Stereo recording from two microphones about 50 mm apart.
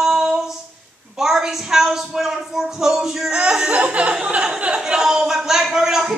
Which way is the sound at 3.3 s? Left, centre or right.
Right.